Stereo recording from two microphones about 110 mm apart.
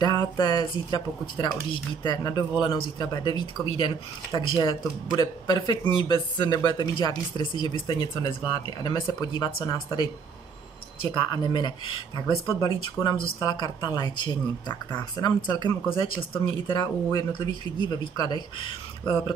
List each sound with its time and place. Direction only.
0.0 s speech: 35° left (ahead or behind)
11.0 s speech: 45° left (ahead or behind)
15.9 s speech: 50° left (ahead or behind)